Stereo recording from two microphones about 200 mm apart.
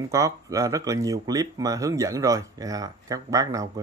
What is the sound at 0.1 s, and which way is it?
Speech, 15° right (ahead or behind).